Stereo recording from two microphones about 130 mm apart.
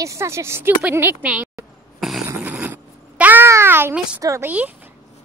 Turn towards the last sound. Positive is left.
turn(degrees=-10)  # may be behind; listen again after turning